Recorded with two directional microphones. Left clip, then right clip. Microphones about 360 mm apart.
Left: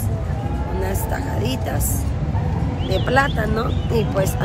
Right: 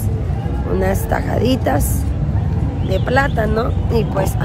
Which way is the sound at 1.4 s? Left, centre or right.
Centre.